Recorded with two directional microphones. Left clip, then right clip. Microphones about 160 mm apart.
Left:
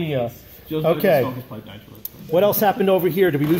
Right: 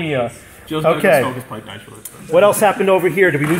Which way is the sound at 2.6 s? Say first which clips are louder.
Right 4 dB; 20° left (ahead or behind).